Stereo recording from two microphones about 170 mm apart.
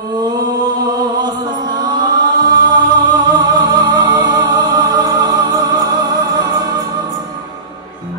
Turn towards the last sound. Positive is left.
turn(degrees=-25)  # may be behind; listen again after turning